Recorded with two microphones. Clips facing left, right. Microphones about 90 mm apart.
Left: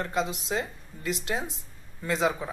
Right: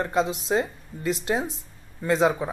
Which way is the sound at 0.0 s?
35° right (ahead or behind).